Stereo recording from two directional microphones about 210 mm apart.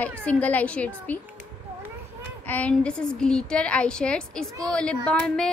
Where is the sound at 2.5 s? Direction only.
5° left (ahead or behind).